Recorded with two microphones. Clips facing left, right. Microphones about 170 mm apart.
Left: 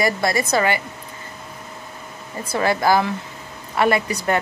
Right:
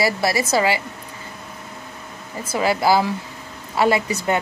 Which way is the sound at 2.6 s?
10° right (ahead or behind).